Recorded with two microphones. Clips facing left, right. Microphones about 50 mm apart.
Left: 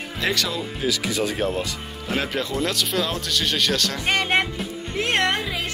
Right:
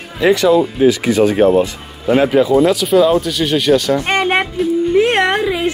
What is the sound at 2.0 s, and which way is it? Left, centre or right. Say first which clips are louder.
Speech: right 14 dB; centre.